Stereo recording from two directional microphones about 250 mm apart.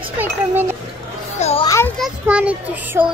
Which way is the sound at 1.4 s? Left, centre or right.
Left.